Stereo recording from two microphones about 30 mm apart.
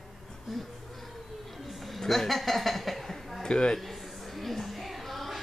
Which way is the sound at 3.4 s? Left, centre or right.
Left.